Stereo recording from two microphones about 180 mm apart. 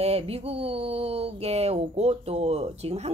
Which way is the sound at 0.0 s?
35° right (ahead or behind).